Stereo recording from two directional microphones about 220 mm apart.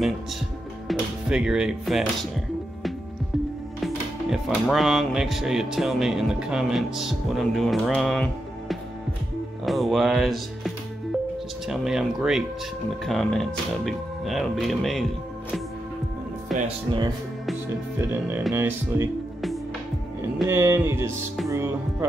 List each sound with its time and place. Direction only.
0.8 s speech: 5° right (ahead or behind)
3.8 s speech: centre (ahead or behind)
16.5 s speech: 25° right (ahead or behind)
18.5 s speech: 10° right (ahead or behind)
20.4 s speech: 10° right (ahead or behind)
21.5 s music: 10° right (ahead or behind)